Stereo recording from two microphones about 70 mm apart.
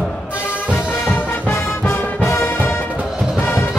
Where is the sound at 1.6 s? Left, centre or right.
Left.